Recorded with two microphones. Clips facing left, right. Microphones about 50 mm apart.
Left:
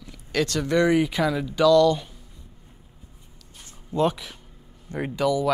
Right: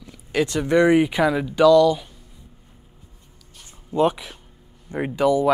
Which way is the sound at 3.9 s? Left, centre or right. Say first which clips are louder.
Right 3 dB; right.